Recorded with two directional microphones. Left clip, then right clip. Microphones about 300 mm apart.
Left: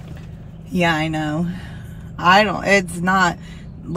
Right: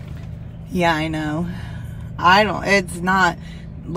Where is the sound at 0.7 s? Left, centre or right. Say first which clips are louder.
Even; centre.